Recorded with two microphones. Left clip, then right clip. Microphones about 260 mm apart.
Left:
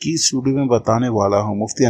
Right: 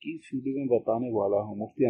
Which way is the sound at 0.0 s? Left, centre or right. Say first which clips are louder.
Left 16 dB; left.